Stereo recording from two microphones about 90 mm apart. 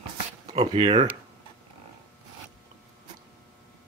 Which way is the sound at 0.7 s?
90° right.